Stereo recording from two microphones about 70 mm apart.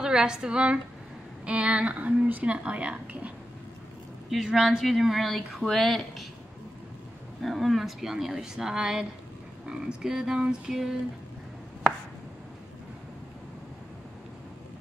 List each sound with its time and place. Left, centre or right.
0.0 s a woman's voice: centre
4.3 s speech: centre
7.4 s a woman's voice: centre